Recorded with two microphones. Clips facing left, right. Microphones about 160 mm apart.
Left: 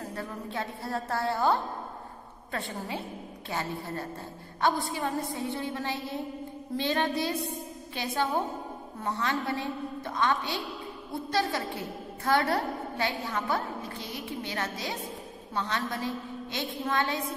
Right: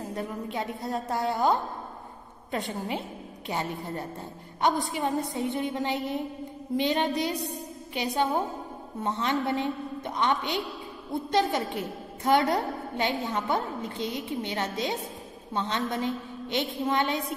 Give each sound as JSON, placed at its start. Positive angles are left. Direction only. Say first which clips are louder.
{"t": 0.0, "sound": "a woman's voice", "louder": "right 3 dB", "side_deg": -15}